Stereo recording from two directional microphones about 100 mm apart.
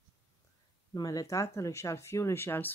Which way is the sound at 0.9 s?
35° left (ahead or behind).